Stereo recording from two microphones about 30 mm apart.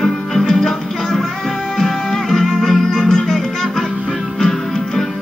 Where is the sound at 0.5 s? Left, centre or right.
Centre.